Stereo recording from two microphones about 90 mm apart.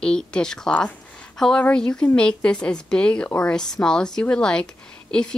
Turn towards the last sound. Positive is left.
turn(degrees=10)  # may be behind; listen again after turning